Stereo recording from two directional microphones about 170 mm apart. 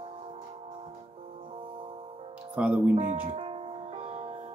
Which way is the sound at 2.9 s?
40° right (ahead or behind).